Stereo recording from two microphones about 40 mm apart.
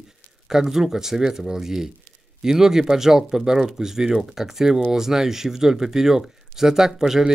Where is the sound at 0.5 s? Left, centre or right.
Centre.